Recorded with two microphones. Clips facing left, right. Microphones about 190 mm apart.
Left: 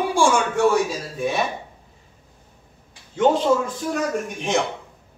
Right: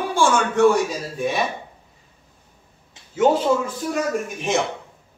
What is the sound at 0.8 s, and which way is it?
Speech, centre (ahead or behind).